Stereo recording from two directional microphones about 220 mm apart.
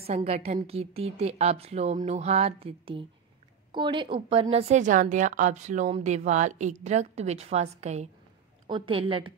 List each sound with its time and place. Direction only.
0.0 s a woman's voice: 25° right (ahead or behind)